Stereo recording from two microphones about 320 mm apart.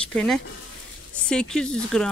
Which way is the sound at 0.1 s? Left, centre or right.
Centre.